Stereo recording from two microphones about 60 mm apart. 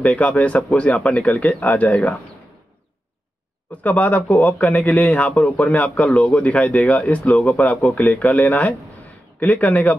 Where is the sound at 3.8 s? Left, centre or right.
Left.